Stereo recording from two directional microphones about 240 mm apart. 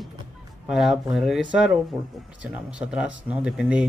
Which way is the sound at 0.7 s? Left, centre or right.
Centre.